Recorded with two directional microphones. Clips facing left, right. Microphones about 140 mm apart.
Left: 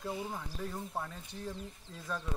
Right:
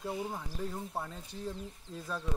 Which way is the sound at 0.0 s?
15° right (ahead or behind).